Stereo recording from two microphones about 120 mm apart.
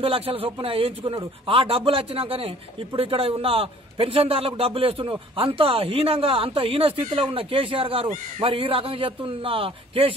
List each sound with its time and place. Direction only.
0.0 s a man's voice: 50° right (ahead or behind)